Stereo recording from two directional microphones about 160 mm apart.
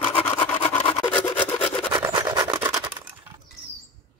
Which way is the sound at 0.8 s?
20° left (ahead or behind).